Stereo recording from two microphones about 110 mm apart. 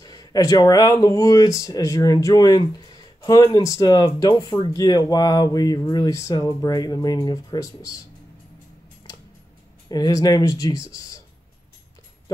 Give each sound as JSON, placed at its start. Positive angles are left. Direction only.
{"t": 0.0, "sound": "speech", "side_deg": 35}
{"t": 9.8, "sound": "speech", "side_deg": 35}